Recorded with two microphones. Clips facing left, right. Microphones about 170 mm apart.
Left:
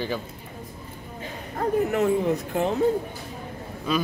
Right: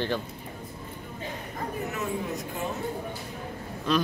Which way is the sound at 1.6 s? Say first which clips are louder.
Left 11 dB; 60° left (ahead or behind).